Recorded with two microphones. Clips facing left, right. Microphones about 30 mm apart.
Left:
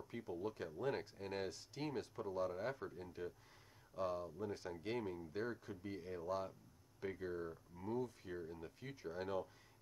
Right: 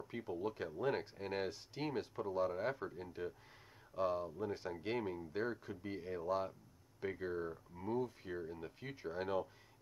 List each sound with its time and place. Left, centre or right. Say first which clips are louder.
0.0 s speech: right 4 dB; centre